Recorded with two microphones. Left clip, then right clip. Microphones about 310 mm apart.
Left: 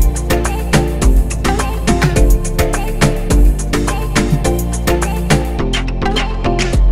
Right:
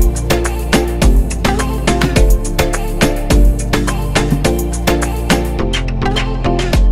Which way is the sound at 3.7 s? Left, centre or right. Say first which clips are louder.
Right 1 dB; centre.